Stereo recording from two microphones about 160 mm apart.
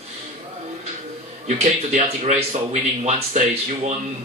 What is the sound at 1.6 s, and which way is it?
Speech, 45° right (ahead or behind).